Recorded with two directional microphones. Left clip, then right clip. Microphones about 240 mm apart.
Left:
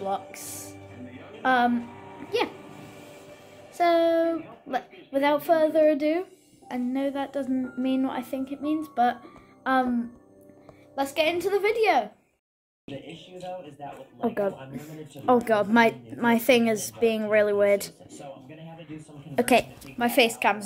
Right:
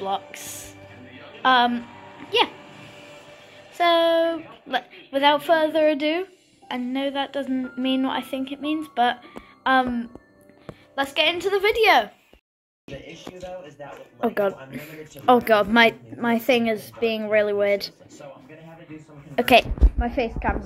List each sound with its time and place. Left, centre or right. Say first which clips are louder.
0.0 s a woman's voice: right 3 dB; centre
1.4 s a woman's voice: right 4 dB; centre
2.6 s a sound: right 2 dB; left
3.7 s a woman's voice: right 3 dB; centre
12.8 s speech: right 2 dB; left
14.2 s a woman's voice: right 4 dB; centre
19.3 s a woman's voice: right 5 dB; centre